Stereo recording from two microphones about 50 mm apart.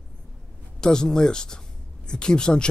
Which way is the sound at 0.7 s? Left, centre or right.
Centre.